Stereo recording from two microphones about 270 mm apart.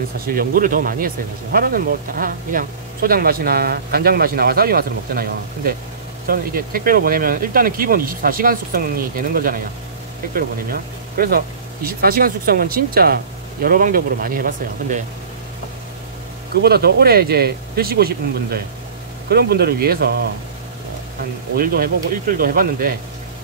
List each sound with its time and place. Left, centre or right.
0.4 s speech: right
16.6 s speech: right
21.5 s speech: right